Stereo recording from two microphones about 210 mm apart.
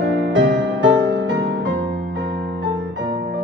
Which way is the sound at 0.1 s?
55° right (ahead or behind).